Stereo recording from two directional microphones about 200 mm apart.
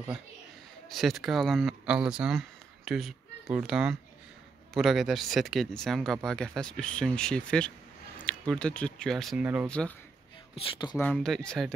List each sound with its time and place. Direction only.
0.9 s speech: centre (ahead or behind)
9.7 s speech: 5° left (ahead or behind)
10.5 s speech: 20° left (ahead or behind)
11.0 s speech: 5° left (ahead or behind)